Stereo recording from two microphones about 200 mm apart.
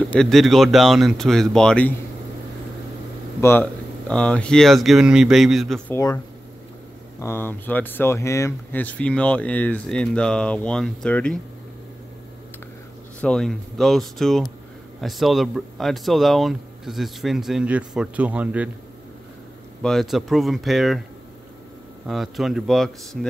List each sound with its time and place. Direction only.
0.1 s speech: centre (ahead or behind)
3.3 s speech: 15° left (ahead or behind)
5.9 s speech: 15° left (ahead or behind)
13.2 s speech: 5° left (ahead or behind)
19.8 s speech: centre (ahead or behind)
22.0 s speech: centre (ahead or behind)